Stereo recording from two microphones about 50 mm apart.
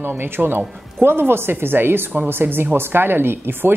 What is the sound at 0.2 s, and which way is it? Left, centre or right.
Speech, right.